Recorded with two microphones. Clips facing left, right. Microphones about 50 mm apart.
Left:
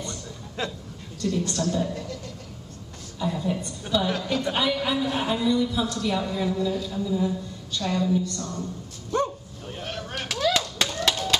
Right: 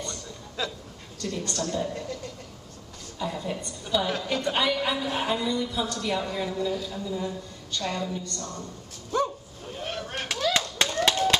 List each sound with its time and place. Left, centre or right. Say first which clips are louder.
1.4 s a woman's voice: even; centre
3.2 s a woman's voice: left 4 dB; centre
7.8 s a woman's voice: left 7 dB; centre
9.8 s a sound: even; centre